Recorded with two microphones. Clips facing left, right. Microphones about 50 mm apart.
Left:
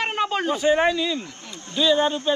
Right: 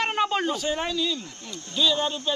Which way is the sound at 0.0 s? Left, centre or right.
Centre.